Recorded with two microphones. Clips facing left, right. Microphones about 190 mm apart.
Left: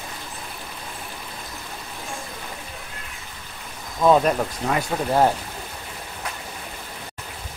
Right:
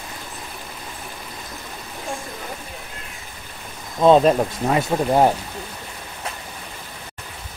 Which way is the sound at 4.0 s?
25° right (ahead or behind).